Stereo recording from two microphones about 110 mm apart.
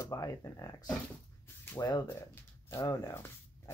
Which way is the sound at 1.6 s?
20° left (ahead or behind).